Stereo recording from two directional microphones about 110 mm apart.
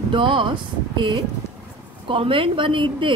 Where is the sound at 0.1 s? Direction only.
50° right (ahead or behind).